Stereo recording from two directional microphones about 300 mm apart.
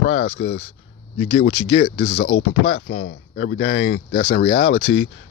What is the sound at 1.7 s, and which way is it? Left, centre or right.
Speech, left.